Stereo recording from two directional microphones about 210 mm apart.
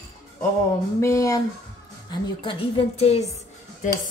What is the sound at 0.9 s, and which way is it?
A woman's voice, 15° left (ahead or behind).